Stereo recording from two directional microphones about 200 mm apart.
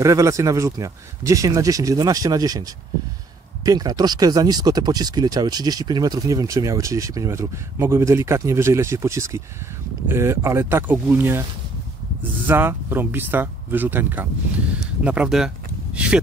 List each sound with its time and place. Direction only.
0.0 s speech: 15° right (ahead or behind)